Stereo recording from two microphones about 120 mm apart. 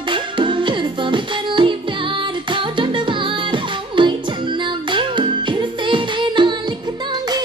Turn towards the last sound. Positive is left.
turn(degrees=-40)  # may be behind; listen again after turning